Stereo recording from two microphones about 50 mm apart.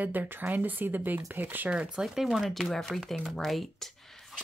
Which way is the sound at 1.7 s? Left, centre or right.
Centre.